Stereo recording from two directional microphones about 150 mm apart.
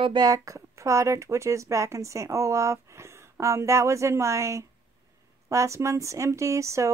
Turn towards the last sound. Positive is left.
turn(degrees=-20)  # may be behind; listen again after turning